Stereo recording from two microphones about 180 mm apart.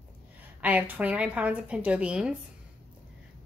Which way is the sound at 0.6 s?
10° right (ahead or behind).